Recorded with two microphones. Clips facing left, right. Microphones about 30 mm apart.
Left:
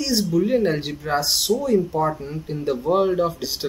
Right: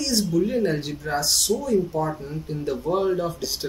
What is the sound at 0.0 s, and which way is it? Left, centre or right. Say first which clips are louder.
Speech: left 2 dB; centre.